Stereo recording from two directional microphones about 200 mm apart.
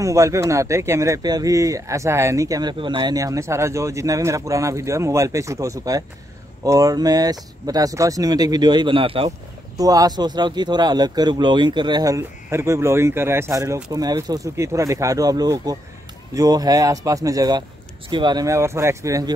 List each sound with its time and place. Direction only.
0.0 s speech: 15° right (ahead or behind)